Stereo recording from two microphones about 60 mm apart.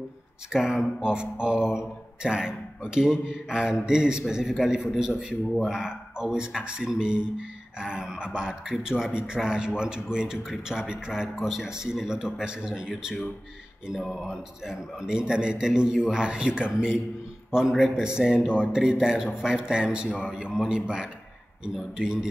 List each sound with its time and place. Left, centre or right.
0.5 s a man's voice: centre